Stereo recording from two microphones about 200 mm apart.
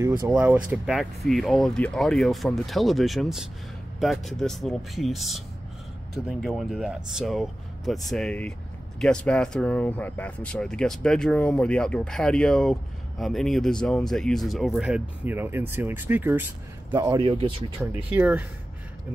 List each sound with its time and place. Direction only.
0.0 s speech: 15° right (ahead or behind)
17.2 s speech: 25° right (ahead or behind)
17.9 s speech: 10° right (ahead or behind)